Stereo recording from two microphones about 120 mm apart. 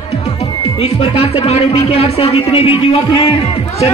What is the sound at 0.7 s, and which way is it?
Speech, 55° left (ahead or behind).